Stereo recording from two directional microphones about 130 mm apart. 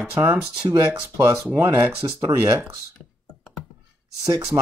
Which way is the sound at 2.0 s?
35° right (ahead or behind).